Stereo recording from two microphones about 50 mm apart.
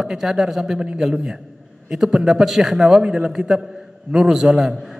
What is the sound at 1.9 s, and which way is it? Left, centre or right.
A man's voice, centre.